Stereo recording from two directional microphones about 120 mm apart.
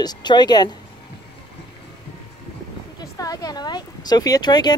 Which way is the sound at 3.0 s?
30° left (ahead or behind).